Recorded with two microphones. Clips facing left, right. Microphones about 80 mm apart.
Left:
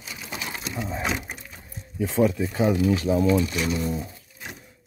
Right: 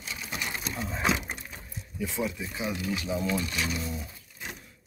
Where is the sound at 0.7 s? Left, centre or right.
Centre.